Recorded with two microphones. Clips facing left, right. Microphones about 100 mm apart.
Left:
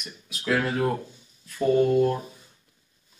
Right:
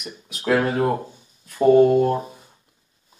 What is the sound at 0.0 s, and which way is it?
Speech, 35° right (ahead or behind).